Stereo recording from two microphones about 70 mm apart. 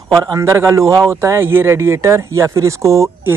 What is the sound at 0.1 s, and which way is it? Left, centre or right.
Speech, right.